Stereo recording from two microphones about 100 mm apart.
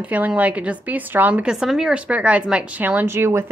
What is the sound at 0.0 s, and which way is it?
Speech, 15° right (ahead or behind).